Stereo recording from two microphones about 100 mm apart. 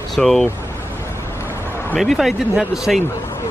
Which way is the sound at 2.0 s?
Centre (ahead or behind).